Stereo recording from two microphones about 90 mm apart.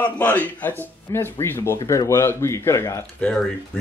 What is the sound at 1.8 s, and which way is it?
Speech, 40° left (ahead or behind).